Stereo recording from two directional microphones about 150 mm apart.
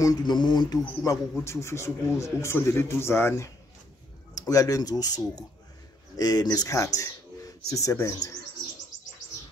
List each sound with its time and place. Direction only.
0.0 s a man's voice: 25° left (ahead or behind)